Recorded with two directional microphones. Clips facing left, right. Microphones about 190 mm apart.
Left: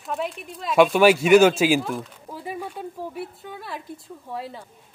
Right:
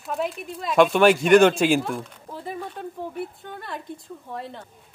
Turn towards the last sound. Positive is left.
turn(degrees=5)  # may be behind; listen again after turning